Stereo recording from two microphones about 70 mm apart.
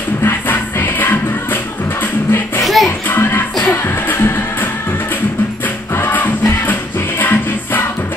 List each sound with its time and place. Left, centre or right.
0.2 s music: left
2.6 s music: centre
3.1 s music: left
5.9 s music: left